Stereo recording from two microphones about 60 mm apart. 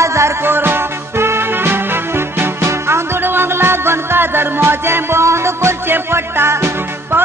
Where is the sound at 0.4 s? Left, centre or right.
Right.